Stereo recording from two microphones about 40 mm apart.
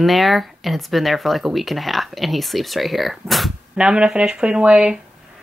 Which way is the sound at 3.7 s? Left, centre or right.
Right.